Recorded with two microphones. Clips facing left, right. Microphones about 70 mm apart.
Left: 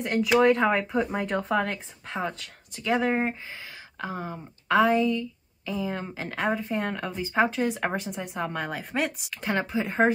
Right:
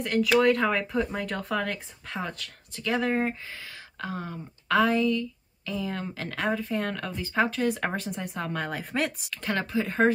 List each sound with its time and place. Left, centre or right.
0.0 s speech: centre